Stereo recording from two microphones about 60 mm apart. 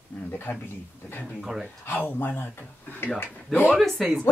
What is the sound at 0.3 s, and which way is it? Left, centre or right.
Speech, left.